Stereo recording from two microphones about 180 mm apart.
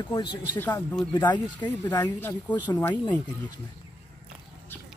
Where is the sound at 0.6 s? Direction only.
10° left (ahead or behind).